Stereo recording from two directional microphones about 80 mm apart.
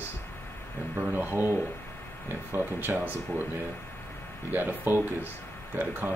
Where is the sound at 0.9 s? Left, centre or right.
Right.